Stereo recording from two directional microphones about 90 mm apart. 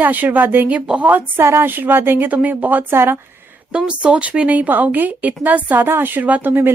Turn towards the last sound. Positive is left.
turn(degrees=-25)  # may be behind; listen again after turning